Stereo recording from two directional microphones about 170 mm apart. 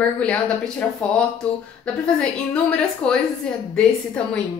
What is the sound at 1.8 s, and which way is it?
A woman's voice, 5° left (ahead or behind).